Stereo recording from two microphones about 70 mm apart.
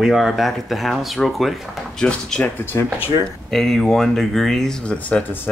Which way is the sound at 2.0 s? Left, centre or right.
Centre.